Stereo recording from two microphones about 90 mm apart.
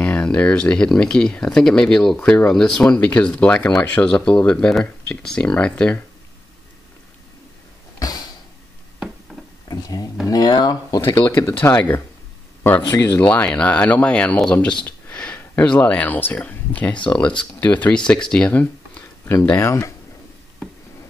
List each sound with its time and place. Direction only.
0.0 s speech: 15° left (ahead or behind)
9.3 s a sound: centre (ahead or behind)
9.7 s a sound: 45° left (ahead or behind)
10.2 s speech: 50° left (ahead or behind)
11.1 s speech: 25° left (ahead or behind)
12.9 s speech: 40° left (ahead or behind)
13.2 s speech: 15° left (ahead or behind)
19.5 s speech: 35° left (ahead or behind)